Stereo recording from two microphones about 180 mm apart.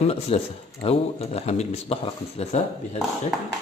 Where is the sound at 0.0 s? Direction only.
35° left (ahead or behind).